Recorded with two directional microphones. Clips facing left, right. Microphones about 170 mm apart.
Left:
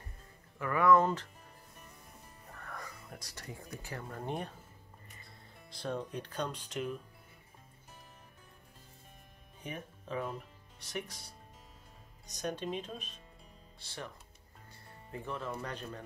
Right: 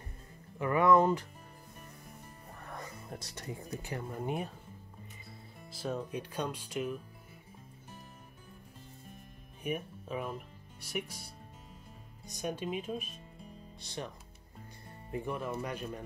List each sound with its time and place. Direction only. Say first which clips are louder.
0.6 s speech: right 1 dB; 20° right (ahead or behind)
2.5 s speech: right 2 dB; 20° right (ahead or behind)
4.2 s speech: right 2 dB; 5° right (ahead or behind)
5.7 s speech: right 1 dB; 5° right (ahead or behind)
9.6 s speech: right 7 dB; 10° right (ahead or behind)
12.4 s speech: right 1 dB; 10° right (ahead or behind)